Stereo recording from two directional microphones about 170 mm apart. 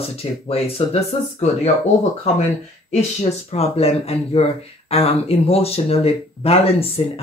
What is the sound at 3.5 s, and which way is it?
Speech, 35° left (ahead or behind).